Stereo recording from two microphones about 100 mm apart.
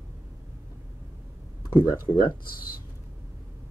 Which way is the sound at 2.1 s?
85° left.